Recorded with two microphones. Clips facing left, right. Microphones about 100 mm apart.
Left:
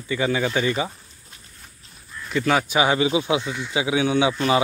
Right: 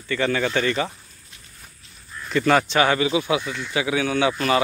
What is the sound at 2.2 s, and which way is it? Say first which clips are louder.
Speech: right 2 dB; 5° left (ahead or behind).